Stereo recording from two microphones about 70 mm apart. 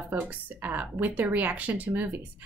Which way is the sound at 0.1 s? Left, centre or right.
Right.